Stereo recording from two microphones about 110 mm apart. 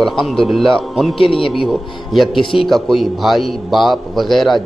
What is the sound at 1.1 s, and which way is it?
Speech, 55° left (ahead or behind).